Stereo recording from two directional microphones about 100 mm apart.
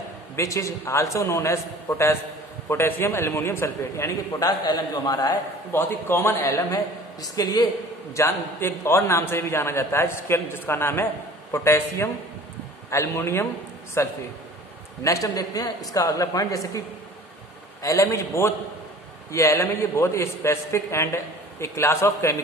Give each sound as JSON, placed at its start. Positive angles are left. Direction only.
{"t": 0.4, "sound": "a man's voice", "side_deg": 30}
{"t": 4.3, "sound": "a man's voice", "side_deg": 40}
{"t": 5.7, "sound": "a man's voice", "side_deg": 20}
{"t": 8.1, "sound": "a man's voice", "side_deg": 25}
{"t": 17.8, "sound": "a man's voice", "side_deg": 30}